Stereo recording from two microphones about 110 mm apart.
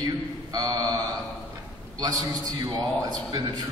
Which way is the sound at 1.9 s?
35° right (ahead or behind).